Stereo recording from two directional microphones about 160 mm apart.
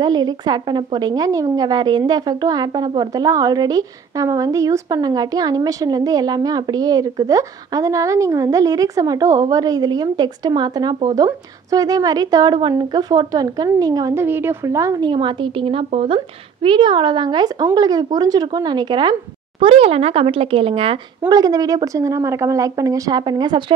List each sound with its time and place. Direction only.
0.0 s a woman's voice: 25° right (ahead or behind)
21.3 s a woman's voice: 25° right (ahead or behind)